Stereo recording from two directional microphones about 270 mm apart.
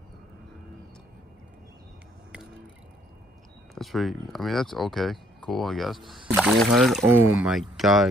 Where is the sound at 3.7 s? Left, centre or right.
Centre.